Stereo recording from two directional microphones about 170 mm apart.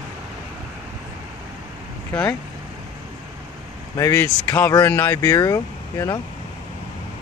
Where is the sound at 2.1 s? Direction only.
10° left (ahead or behind).